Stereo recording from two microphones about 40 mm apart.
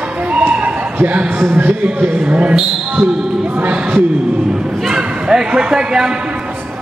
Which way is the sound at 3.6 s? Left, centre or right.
Right.